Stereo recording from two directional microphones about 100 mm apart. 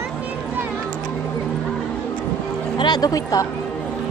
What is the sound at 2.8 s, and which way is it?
Music, 40° left (ahead or behind).